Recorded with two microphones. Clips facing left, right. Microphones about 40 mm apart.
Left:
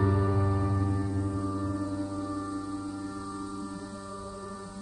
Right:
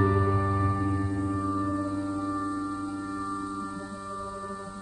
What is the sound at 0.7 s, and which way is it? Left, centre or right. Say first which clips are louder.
Music: right 2 dB; right.